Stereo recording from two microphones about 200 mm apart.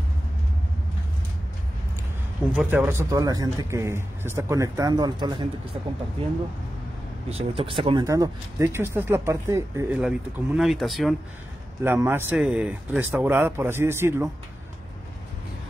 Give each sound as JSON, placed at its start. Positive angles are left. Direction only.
{"t": 2.5, "sound": "speech", "side_deg": -10}
{"t": 7.2, "sound": "speech", "side_deg": -30}
{"t": 11.8, "sound": "speech", "side_deg": -10}